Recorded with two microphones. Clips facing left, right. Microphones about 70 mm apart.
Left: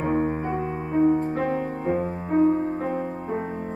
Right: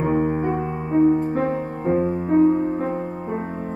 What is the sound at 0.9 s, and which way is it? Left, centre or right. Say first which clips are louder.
Music: right 3 dB; centre.